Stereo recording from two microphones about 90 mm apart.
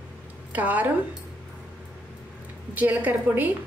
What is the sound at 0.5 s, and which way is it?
Speech, 20° right (ahead or behind).